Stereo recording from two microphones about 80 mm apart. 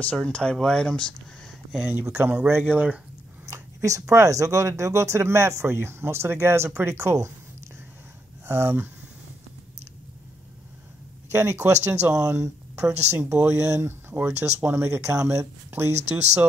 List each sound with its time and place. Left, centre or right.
0.0 s speech: centre
1.9 s speech: right
3.4 s a sound: right
4.1 s speech: right
8.5 s speech: right
11.3 s speech: right
15.7 s speech: right